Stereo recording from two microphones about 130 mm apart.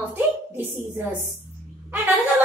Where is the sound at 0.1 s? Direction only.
15° right (ahead or behind).